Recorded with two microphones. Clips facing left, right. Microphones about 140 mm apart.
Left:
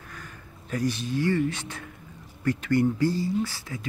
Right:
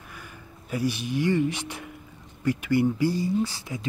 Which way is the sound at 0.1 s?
10° right (ahead or behind).